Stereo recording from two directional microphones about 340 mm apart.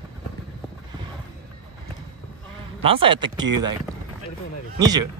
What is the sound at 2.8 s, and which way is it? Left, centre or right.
Speech, centre.